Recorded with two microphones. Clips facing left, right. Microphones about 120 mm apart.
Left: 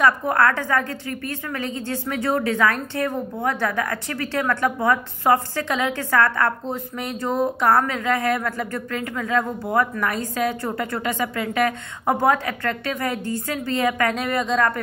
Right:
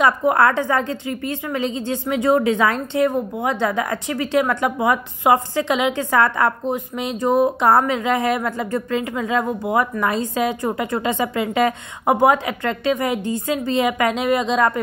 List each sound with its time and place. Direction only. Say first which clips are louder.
0.0 s a woman's voice: right 3 dB; 20° right (ahead or behind)